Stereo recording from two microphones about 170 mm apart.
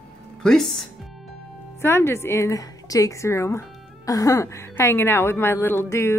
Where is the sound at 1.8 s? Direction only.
15° left (ahead or behind).